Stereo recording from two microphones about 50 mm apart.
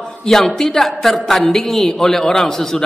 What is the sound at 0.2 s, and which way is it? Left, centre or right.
A woman's voice, centre.